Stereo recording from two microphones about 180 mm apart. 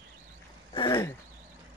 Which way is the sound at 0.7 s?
20° left (ahead or behind).